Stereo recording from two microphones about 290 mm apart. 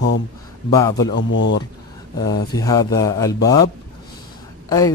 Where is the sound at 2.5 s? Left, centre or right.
Centre.